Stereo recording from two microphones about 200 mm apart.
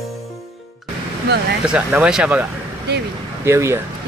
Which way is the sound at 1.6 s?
5° right (ahead or behind).